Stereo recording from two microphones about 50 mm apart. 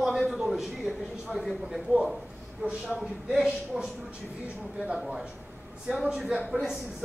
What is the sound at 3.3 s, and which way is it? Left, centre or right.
Speech, centre.